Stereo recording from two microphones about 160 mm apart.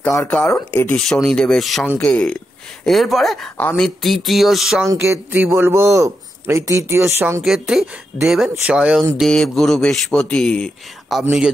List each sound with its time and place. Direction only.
0.3 s a man's voice: 10° left (ahead or behind)
4.8 s a man's voice: 15° right (ahead or behind)
7.4 s a man's voice: centre (ahead or behind)
9.2 s a man's voice: 5° left (ahead or behind)